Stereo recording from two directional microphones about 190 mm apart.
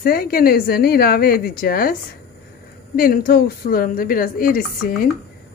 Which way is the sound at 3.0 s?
50° left (ahead or behind).